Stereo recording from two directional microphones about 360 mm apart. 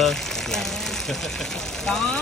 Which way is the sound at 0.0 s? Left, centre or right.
Centre.